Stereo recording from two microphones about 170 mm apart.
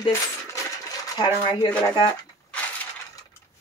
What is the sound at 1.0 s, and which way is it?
Speech, 25° left (ahead or behind).